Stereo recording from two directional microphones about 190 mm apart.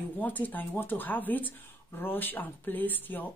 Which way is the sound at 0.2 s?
10° left (ahead or behind).